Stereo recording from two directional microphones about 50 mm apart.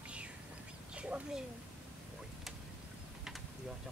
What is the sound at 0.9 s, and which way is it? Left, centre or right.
Bird, right.